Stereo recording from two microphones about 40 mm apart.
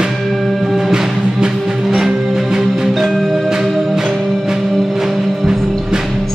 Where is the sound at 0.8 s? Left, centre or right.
Centre.